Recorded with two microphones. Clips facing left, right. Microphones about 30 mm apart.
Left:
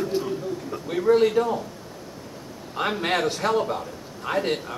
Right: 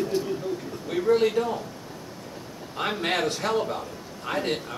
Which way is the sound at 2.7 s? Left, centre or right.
Centre.